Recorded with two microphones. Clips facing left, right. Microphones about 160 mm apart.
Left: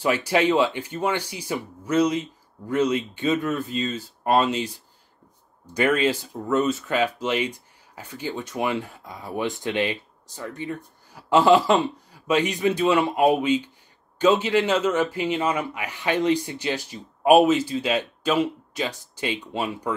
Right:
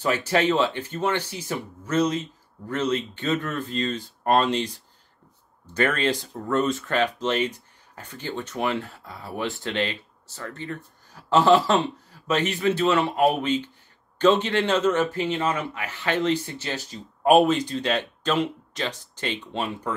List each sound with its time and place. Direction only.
0.0 s speech: 10° left (ahead or behind)